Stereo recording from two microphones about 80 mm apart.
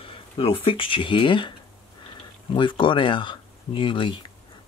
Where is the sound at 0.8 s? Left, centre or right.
Left.